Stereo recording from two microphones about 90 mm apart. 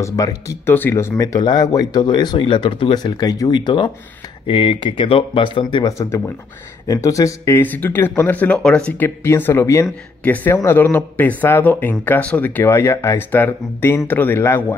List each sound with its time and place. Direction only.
0.0 s speech: 40° left (ahead or behind)
0.7 s speech: 25° left (ahead or behind)
1.1 s speech: 40° left (ahead or behind); by 5.9 s 65° left (ahead or behind)
5.9 s speech: 35° left (ahead or behind)
7.6 s speech: 20° left (ahead or behind)
8.9 s speech: 25° left (ahead or behind)
10.2 s speech: 20° left (ahead or behind)
10.5 s speech: 30° left (ahead or behind)
10.9 s speech: 20° left (ahead or behind)
12.6 s speech: 30° left (ahead or behind)